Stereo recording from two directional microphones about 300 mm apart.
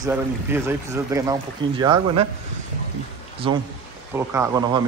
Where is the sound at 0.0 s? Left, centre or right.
Centre.